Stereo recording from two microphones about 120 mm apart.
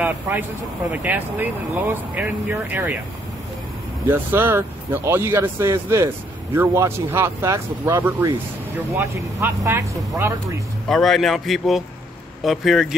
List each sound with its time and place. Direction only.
0.0 s speech: 15° right (ahead or behind)
4.1 s speech: 20° right (ahead or behind)
10.9 s a man's voice: centre (ahead or behind)